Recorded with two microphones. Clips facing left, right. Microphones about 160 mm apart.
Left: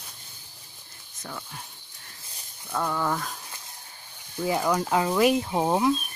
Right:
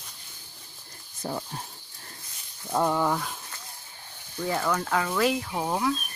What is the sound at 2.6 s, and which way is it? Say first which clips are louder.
Speech: right 4 dB; 25° right (ahead or behind).